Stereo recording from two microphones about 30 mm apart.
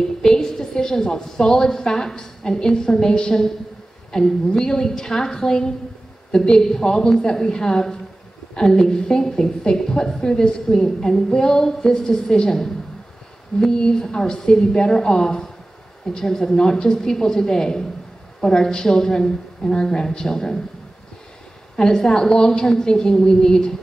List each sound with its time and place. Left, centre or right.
0.2 s a woman's voice: left
13.7 s a woman's voice: left
21.9 s a woman's voice: left